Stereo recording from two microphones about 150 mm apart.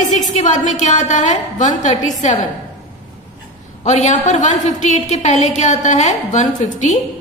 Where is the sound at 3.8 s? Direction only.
55° left (ahead or behind).